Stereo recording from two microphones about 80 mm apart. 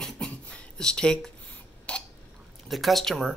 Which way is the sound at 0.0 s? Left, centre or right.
Centre.